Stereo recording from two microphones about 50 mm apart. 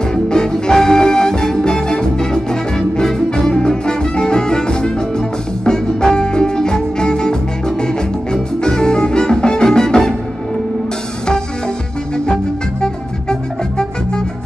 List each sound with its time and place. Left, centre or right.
0.1 s music: centre
12.8 s music: centre